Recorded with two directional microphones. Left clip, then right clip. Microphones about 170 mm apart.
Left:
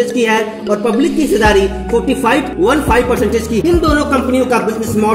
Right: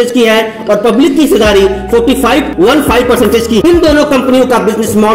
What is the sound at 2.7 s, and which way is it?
Speech, 10° right (ahead or behind).